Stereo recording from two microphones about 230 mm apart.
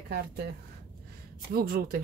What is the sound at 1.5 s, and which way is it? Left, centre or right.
Speech, right.